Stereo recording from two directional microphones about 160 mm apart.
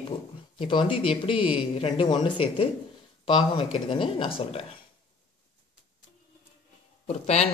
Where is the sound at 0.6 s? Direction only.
30° left (ahead or behind).